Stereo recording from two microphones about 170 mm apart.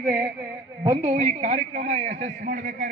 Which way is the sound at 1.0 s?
40° right (ahead or behind).